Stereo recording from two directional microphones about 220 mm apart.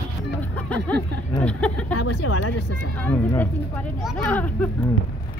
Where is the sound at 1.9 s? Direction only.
80° left.